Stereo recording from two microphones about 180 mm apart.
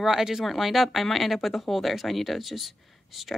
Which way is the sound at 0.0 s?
Centre (ahead or behind).